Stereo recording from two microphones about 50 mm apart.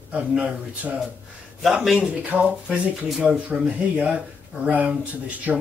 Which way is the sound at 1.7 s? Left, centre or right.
Centre.